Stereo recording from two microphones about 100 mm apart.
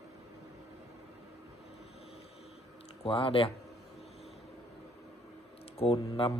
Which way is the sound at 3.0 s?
65° left (ahead or behind).